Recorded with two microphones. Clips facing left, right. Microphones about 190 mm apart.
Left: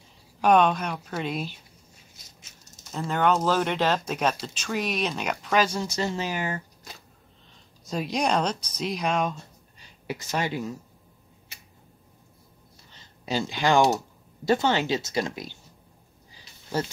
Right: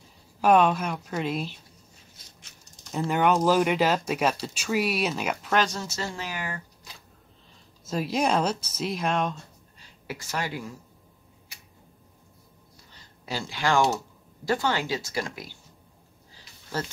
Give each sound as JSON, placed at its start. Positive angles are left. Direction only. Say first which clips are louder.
{"t": 0.4, "sound": "speech", "louder": "even", "side_deg": -5}
{"t": 3.1, "sound": "speech", "louder": "right 1 dB", "side_deg": -10}
{"t": 5.8, "sound": "speech", "louder": "left 5 dB", "side_deg": 15}
{"t": 7.8, "sound": "speech", "louder": "right 1 dB", "side_deg": -5}
{"t": 9.8, "sound": "a sound", "louder": "left 4 dB", "side_deg": 20}
{"t": 13.2, "sound": "speech", "louder": "left 4 dB", "side_deg": 20}